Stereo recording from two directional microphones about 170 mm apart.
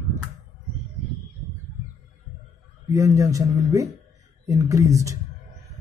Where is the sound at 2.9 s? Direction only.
20° right (ahead or behind).